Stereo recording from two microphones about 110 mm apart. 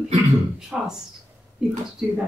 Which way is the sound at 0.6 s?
5° right (ahead or behind).